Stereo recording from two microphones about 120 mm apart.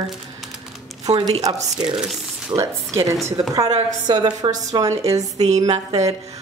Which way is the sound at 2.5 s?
25° right (ahead or behind).